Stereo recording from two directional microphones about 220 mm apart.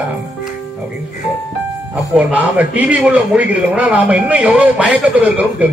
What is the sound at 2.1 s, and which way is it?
A man's voice, 5° right (ahead or behind).